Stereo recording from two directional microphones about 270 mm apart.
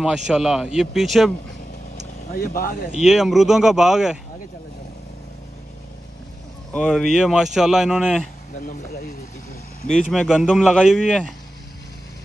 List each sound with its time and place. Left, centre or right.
0.0 s speech: centre
2.3 s speech: left
3.0 s speech: centre
6.7 s speech: centre
8.5 s speech: left
10.1 s speech: centre